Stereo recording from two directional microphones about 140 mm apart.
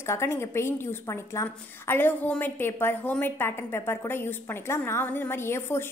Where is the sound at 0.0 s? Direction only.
20° left (ahead or behind).